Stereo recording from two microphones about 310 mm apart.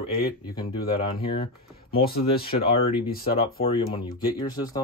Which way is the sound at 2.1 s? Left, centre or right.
Left.